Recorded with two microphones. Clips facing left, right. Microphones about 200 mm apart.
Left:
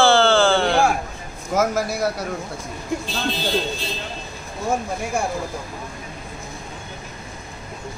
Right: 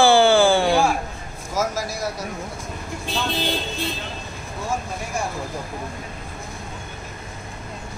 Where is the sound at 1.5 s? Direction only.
60° left (ahead or behind).